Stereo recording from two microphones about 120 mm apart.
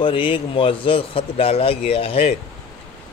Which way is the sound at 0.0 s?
45° left (ahead or behind).